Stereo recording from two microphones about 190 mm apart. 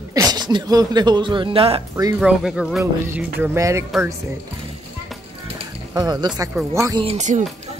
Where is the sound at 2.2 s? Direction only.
Centre (ahead or behind).